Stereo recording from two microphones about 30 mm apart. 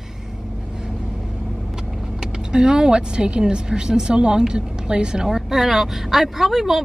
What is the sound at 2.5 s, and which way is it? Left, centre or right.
Speech, right.